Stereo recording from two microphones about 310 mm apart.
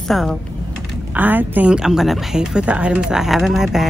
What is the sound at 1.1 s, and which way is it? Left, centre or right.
A woman's voice, centre.